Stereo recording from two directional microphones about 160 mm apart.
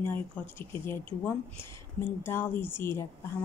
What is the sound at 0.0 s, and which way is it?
A woman's voice, 15° left (ahead or behind).